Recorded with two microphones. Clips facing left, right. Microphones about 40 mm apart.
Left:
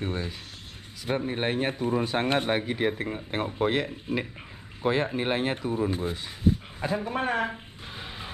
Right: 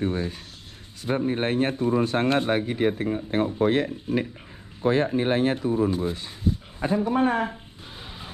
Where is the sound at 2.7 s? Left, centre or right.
Left.